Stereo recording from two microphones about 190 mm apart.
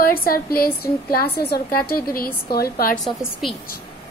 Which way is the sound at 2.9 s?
Centre (ahead or behind).